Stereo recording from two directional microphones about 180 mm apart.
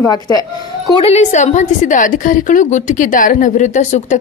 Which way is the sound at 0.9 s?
35° left (ahead or behind).